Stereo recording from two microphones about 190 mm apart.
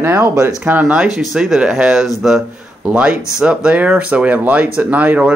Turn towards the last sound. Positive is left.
turn(degrees=-5)  # may be behind; listen again after turning